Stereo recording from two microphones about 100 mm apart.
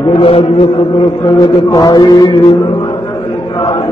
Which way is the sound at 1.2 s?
35° left (ahead or behind).